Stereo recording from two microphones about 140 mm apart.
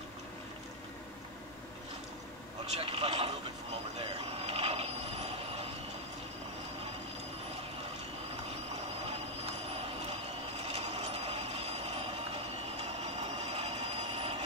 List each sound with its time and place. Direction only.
2.8 s speech: 45° right (ahead or behind)
3.9 s a sound: 45° right (ahead or behind)
9.0 s vehicle: 50° right (ahead or behind)
10.6 s train: 50° right (ahead or behind)